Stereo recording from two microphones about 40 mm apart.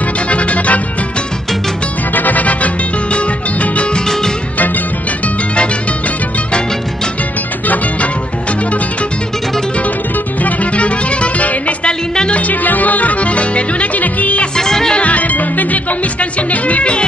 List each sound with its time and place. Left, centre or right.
0.0 s music: left
2.1 s music: left
3.9 s music: centre
4.6 s music: left
5.6 s music: left
7.6 s music: left
14.5 s music: centre
15.0 s music: left